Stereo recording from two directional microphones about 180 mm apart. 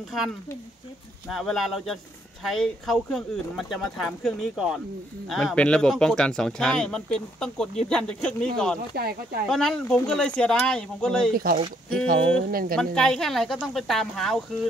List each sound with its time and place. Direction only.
1.3 s speech: centre (ahead or behind)
8.9 s speech: 60° right (ahead or behind)
9.5 s speech: 5° left (ahead or behind)
12.1 s speech: 55° right (ahead or behind)
12.7 s speech: 5° left (ahead or behind)